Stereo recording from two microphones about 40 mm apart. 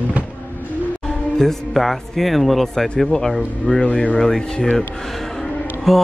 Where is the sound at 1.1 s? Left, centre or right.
Centre.